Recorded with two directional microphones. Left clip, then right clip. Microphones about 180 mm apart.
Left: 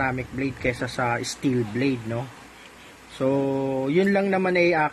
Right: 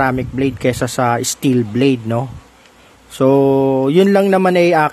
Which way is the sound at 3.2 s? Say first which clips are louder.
Right 12 dB; 45° right (ahead or behind).